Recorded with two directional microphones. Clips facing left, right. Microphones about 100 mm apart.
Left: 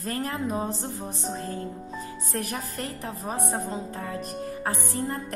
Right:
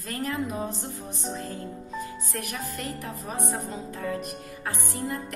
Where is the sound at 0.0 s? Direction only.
35° left (ahead or behind).